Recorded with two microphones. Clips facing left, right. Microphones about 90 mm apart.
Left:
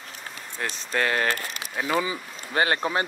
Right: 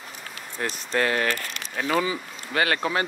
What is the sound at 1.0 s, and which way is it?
Speech, 40° left (ahead or behind).